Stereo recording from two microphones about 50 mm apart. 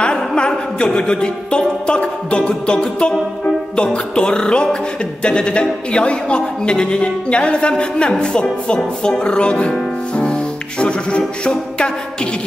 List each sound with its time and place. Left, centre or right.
0.4 s music: centre
3.7 s a man's voice: centre